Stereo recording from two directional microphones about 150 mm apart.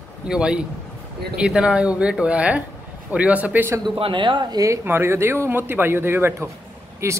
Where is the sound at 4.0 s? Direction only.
35° right (ahead or behind).